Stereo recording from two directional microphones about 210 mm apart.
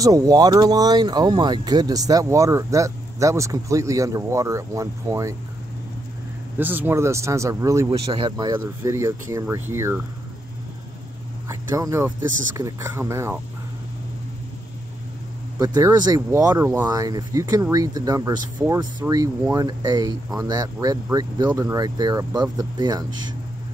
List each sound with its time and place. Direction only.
0.0 s speech: 15° right (ahead or behind)
6.6 s speech: 10° right (ahead or behind)
11.7 s speech: 15° right (ahead or behind)
15.6 s speech: 15° right (ahead or behind)